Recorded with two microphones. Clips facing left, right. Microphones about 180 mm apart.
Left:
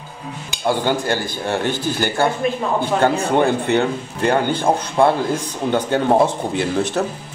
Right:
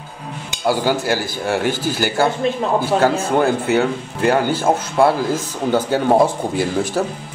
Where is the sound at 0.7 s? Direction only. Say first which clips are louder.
Right 1 dB; 5° right (ahead or behind).